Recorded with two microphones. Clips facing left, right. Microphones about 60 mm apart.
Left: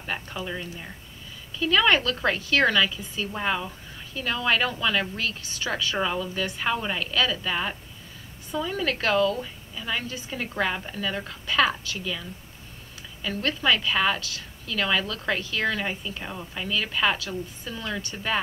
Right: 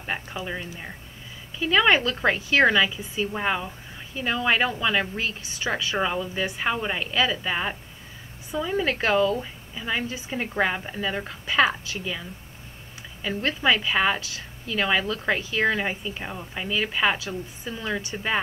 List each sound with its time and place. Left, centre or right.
0.0 s a woman's voice: centre